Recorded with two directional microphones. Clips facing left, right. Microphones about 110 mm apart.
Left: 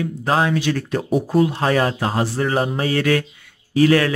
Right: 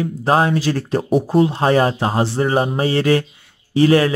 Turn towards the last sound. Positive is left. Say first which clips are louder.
# right 2 dB
turn(degrees=-25)  # may be behind; listen again after turning